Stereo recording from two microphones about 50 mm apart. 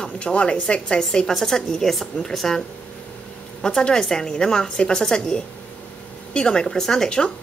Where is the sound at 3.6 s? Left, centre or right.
Centre.